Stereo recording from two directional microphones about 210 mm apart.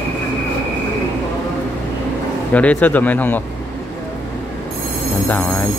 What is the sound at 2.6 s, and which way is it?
Speech, 5° left (ahead or behind).